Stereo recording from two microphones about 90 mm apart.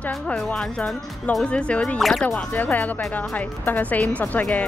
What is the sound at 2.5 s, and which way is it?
A woman's voice, 20° left (ahead or behind).